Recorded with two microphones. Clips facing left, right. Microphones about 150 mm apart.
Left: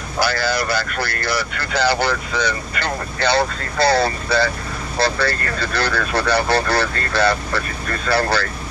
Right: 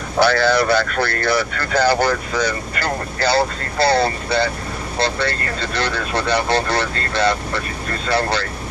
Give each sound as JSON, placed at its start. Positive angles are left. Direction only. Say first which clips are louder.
{"t": 0.2, "sound": "speech", "louder": "right 5 dB", "side_deg": -60}